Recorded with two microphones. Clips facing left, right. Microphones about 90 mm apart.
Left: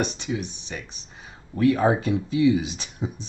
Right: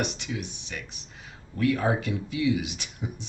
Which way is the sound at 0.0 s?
25° left (ahead or behind).